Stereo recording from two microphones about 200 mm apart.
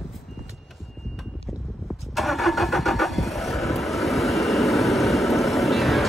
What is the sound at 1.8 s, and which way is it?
Vehicle, centre (ahead or behind).